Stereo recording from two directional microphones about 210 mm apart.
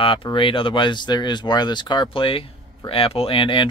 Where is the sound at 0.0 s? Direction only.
25° left (ahead or behind).